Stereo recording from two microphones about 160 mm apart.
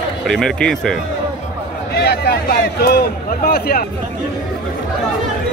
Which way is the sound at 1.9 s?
85° left.